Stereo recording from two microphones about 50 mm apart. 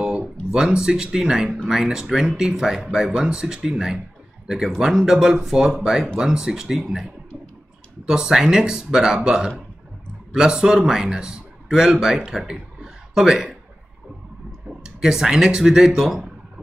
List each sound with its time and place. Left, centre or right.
0.5 s speech: centre
8.1 s speech: centre
14.8 s speech: centre